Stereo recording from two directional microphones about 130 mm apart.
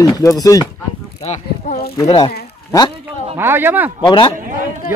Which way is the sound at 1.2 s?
60° left (ahead or behind).